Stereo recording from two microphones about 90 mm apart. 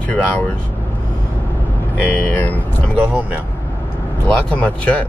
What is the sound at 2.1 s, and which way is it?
Speech, 20° left (ahead or behind).